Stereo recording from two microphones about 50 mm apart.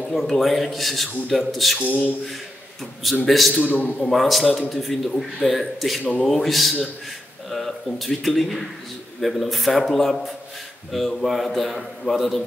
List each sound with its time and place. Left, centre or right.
0.1 s a man's voice: centre
1.8 s a man's voice: left
3.3 s a man's voice: centre
3.6 s a man's voice: left
4.1 s a man's voice: centre